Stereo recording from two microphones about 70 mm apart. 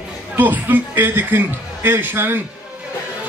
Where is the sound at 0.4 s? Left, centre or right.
Right.